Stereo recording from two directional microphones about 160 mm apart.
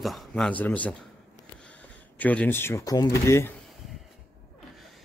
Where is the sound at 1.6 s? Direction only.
10° left (ahead or behind).